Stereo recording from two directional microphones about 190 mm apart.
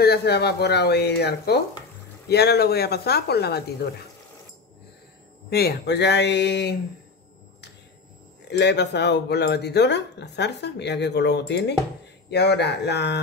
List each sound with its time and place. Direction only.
0.0 s speech: 55° left (ahead or behind)
5.5 s speech: 55° left (ahead or behind)
8.5 s speech: 60° left (ahead or behind)